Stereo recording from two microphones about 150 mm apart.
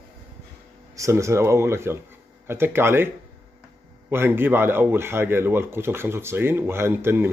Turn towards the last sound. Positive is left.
turn(degrees=-15)  # may be behind; listen again after turning